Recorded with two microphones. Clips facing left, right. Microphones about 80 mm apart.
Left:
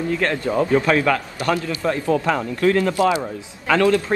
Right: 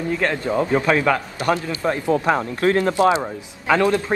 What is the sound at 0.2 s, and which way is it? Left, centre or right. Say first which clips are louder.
Speech: even; centre.